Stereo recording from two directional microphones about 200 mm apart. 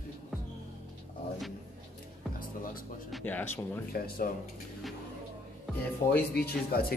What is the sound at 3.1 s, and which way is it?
Speech, 10° left (ahead or behind).